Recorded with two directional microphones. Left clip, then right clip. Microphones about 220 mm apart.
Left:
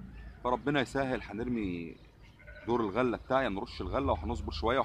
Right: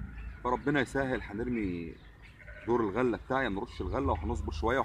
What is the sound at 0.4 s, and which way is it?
Speech, centre (ahead or behind).